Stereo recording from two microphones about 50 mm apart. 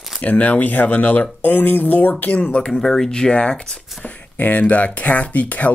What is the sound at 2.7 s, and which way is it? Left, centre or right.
Speech, centre.